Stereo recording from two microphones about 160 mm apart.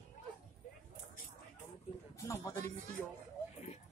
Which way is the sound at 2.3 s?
15° left (ahead or behind).